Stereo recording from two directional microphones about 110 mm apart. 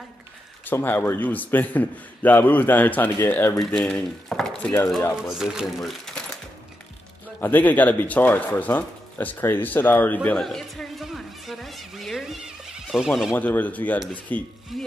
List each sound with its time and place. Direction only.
0.7 s a man's voice: 20° left (ahead or behind)
3.5 s speech: 5° left (ahead or behind)
5.3 s speech: 5° right (ahead or behind)
7.3 s speech: 15° left (ahead or behind); by 13.3 s centre (ahead or behind)
13.3 s a man's voice: 15° left (ahead or behind)
14.7 s speech: centre (ahead or behind)